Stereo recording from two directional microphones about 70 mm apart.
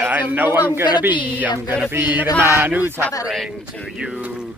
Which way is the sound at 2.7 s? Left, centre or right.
Right.